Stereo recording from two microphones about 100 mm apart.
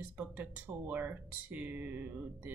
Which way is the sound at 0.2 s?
15° right (ahead or behind).